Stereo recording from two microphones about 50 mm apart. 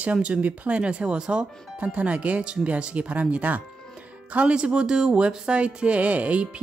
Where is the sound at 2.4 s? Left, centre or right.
Centre.